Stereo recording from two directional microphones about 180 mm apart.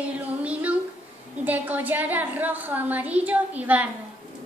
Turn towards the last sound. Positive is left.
turn(degrees=-10)  # may be behind; listen again after turning